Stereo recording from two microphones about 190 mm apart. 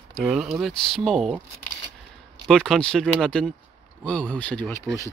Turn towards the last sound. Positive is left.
turn(degrees=10)  # may be behind; listen again after turning